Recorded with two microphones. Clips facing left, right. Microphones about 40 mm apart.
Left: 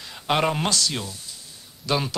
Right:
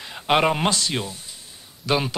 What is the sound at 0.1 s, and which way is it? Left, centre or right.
A man's voice, right.